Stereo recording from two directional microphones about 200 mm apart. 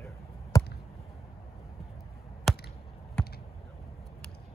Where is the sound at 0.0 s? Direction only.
15° left (ahead or behind).